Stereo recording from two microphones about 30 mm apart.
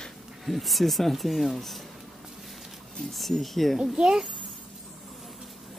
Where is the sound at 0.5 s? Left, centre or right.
Centre.